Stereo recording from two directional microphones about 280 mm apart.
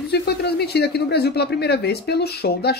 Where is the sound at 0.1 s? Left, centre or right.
Left.